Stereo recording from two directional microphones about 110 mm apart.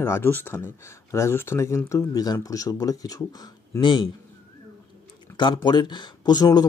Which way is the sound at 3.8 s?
45° left (ahead or behind).